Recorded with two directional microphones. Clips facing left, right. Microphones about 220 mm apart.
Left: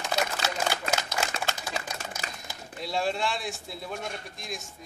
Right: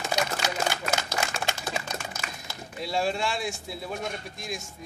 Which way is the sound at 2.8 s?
Centre (ahead or behind).